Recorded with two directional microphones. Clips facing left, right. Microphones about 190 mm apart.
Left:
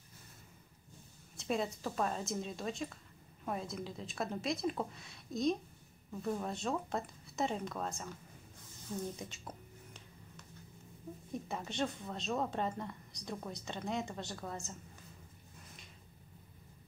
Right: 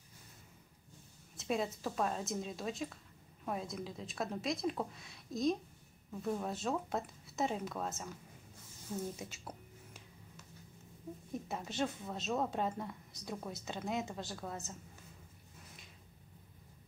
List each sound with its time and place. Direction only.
1.3 s a woman's voice: centre (ahead or behind)
8.9 s a sound: 5° right (ahead or behind)
11.4 s a woman's voice: 5° right (ahead or behind)